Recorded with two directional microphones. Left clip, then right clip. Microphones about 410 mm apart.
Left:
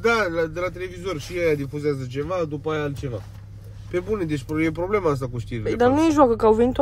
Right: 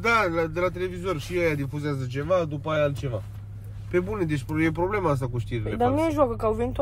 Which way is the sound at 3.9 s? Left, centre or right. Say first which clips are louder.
Left 1 dB; centre.